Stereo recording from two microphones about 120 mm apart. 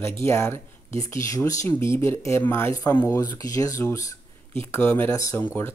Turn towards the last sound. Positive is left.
turn(degrees=20)  # may be behind; listen again after turning